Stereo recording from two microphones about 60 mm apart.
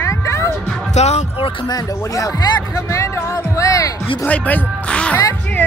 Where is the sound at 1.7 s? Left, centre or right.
Left.